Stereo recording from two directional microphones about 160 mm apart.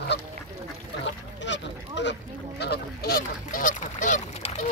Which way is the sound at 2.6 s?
85° left.